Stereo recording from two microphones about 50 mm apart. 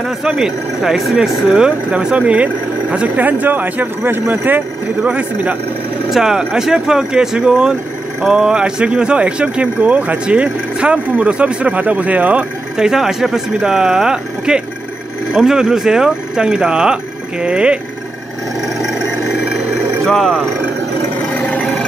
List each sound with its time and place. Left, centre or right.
0.4 s speech: centre; by 3.1 s right
3.2 s speech: right
6.0 s speech: centre; by 12.4 s right
12.7 s speech: centre
20.2 s speech: centre